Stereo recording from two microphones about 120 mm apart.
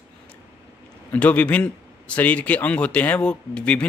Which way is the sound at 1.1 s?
10° left (ahead or behind).